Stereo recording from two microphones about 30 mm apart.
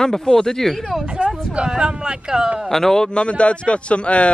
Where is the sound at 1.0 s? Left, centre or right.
Right.